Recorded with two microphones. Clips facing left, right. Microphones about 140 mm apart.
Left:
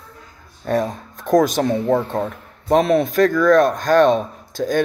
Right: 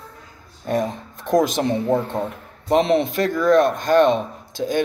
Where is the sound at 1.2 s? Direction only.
45° left (ahead or behind).